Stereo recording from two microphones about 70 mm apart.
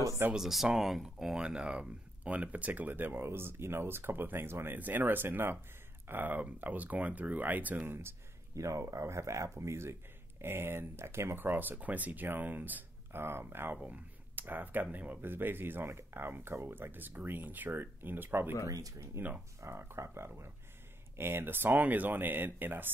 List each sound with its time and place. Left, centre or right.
0.3 s speech: centre; by 8.2 s right
8.5 s speech: right
13.7 s speech: right
18.7 s speech: right
19.2 s speech: right